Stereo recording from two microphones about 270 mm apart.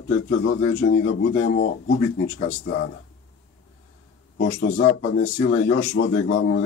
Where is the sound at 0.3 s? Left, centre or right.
Left.